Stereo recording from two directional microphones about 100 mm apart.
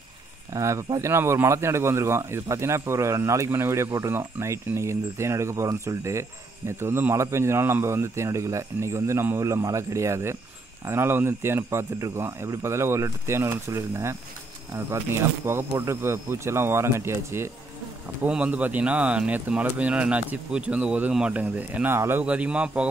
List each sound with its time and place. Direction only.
0.5 s speech: 30° right (ahead or behind)
18.2 s speech: 15° right (ahead or behind)
22.2 s speech: 10° right (ahead or behind)